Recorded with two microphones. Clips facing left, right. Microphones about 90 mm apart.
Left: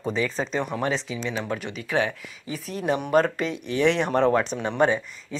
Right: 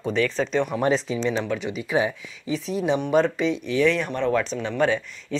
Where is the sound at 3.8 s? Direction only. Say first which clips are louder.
Left 2 dB; 30° left (ahead or behind).